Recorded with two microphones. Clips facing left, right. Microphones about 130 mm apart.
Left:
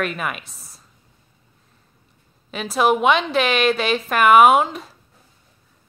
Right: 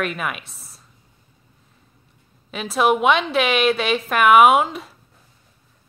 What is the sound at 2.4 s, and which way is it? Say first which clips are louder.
Speech: even; centre (ahead or behind).